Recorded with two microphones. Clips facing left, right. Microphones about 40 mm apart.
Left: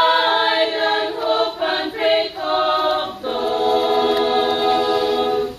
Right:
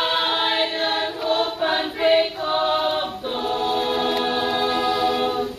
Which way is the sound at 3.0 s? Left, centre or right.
Centre.